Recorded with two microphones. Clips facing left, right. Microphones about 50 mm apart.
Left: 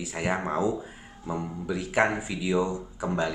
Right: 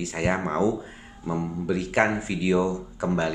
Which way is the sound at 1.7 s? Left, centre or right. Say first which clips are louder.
Right 1 dB; centre.